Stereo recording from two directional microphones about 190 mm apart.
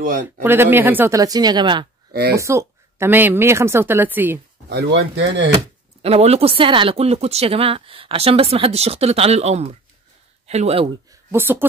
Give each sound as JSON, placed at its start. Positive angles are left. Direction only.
{"t": 0.4, "sound": "a woman's voice", "side_deg": -10}
{"t": 4.6, "sound": "speech", "side_deg": -65}
{"t": 6.0, "sound": "speech", "side_deg": -30}
{"t": 11.1, "sound": "speech", "side_deg": -10}